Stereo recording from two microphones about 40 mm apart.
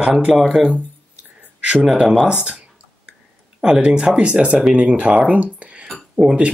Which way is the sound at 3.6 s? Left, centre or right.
Right.